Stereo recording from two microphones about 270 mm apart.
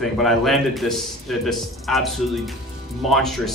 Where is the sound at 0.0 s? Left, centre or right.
Centre.